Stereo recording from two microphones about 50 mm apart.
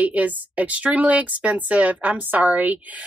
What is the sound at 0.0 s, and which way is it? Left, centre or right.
Speech, right.